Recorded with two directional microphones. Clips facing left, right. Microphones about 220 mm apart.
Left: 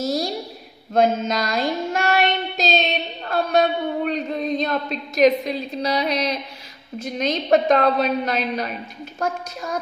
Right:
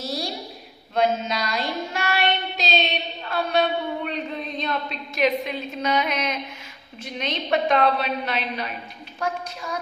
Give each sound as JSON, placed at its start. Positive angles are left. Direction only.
{"t": 0.0, "sound": "a sound", "side_deg": 45}
{"t": 0.9, "sound": "child singing", "side_deg": 45}
{"t": 3.3, "sound": "a woman's voice", "side_deg": 45}